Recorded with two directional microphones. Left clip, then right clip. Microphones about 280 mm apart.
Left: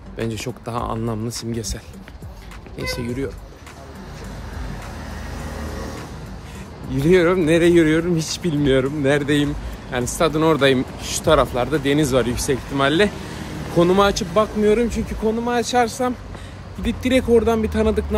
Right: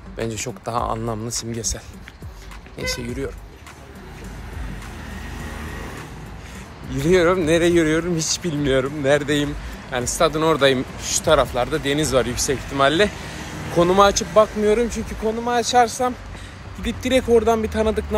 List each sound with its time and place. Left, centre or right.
0.2 s speech: centre
2.8 s speech: centre
6.9 s speech: centre